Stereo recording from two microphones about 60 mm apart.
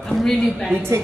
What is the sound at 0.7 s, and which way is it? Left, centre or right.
Speech, right.